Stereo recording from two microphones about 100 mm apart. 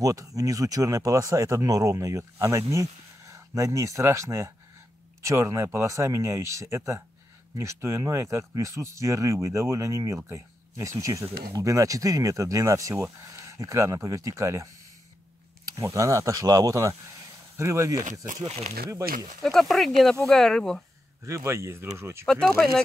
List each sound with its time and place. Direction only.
0.0 s speech: 35° right (ahead or behind)
15.7 s speech: 30° right (ahead or behind)
19.4 s speech: centre (ahead or behind)
21.2 s speech: 30° right (ahead or behind)
22.2 s speech: 5° left (ahead or behind)